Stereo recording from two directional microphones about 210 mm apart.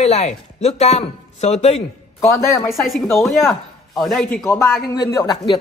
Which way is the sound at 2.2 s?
15° left (ahead or behind).